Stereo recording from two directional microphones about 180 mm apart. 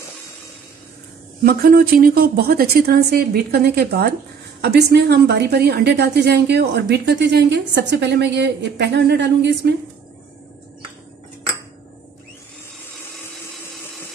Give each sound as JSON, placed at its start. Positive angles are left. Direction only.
{"t": 1.4, "sound": "a woman's voice", "side_deg": -55}